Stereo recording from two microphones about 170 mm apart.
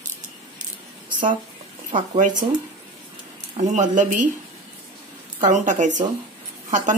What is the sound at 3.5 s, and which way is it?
Speech, 45° right (ahead or behind).